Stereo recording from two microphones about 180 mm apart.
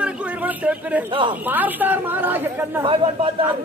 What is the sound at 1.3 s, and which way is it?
A man's voice, 10° right (ahead or behind).